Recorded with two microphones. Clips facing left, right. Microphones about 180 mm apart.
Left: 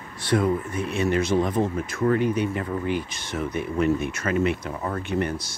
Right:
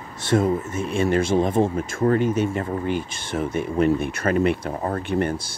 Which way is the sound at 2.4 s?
45° right (ahead or behind).